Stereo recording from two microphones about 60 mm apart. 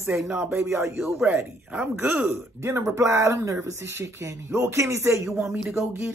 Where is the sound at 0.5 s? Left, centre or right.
Right.